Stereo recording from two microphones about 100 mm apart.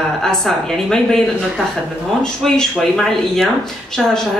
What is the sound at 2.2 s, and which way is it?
Speech, 5° left (ahead or behind).